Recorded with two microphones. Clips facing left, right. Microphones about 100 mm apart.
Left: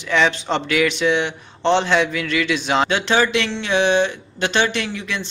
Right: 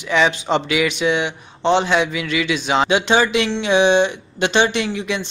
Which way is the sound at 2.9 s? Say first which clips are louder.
Right 2 dB; 15° right (ahead or behind).